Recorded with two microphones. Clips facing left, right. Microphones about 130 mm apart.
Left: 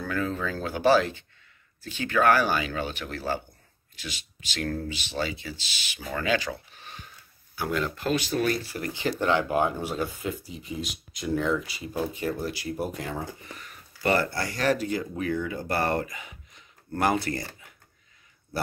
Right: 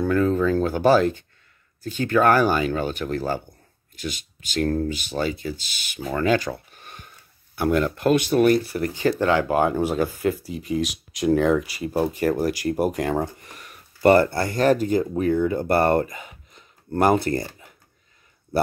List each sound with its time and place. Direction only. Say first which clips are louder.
0.1 s speech: right 8 dB; 40° right (ahead or behind); by 13.3 s 65° right (ahead or behind)
14.0 s speech: right 9 dB; 45° right (ahead or behind)